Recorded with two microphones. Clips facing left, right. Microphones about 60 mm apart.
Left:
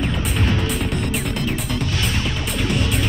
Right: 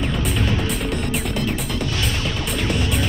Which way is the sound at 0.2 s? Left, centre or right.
Centre.